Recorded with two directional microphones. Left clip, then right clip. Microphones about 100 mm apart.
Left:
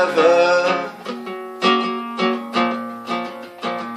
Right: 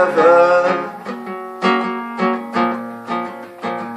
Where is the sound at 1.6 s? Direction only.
25° left (ahead or behind).